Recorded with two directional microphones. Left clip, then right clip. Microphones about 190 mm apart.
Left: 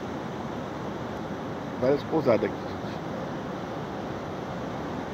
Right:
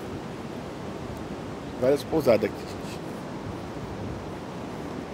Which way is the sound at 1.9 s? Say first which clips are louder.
Right 2 dB; 30° right (ahead or behind).